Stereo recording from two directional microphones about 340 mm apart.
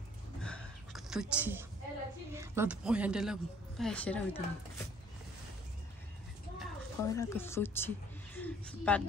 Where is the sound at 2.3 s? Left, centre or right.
Centre.